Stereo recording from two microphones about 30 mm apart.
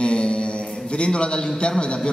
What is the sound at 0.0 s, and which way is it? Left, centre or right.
Mantra, left.